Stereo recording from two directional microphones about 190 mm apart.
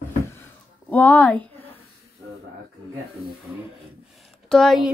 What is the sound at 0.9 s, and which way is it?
Speech, 10° left (ahead or behind).